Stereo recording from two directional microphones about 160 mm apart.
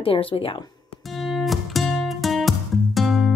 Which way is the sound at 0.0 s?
35° left (ahead or behind).